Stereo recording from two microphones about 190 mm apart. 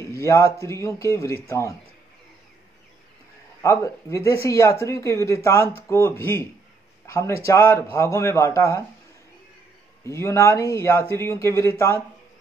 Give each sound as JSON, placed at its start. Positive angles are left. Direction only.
{"t": 0.0, "sound": "a sound", "side_deg": 15}
{"t": 0.6, "sound": "speech", "side_deg": 15}
{"t": 3.6, "sound": "speech", "side_deg": 15}
{"t": 10.0, "sound": "speech", "side_deg": 15}